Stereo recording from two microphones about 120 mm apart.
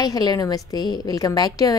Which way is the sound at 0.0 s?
35° left (ahead or behind).